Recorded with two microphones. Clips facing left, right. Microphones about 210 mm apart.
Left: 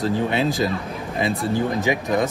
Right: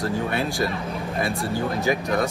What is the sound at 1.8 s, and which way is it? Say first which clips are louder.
Speech: left 2 dB; 20° left (ahead or behind).